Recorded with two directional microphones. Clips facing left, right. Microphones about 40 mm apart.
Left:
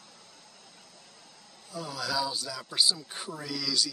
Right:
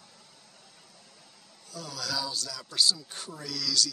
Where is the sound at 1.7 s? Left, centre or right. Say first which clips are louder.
Left 3 dB; centre.